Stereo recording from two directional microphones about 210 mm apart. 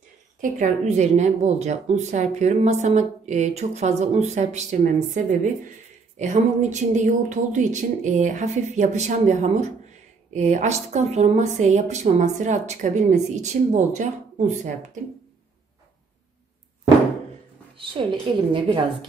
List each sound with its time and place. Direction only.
0.4 s a woman's voice: 35° right (ahead or behind)
18.0 s a woman's voice: 25° right (ahead or behind)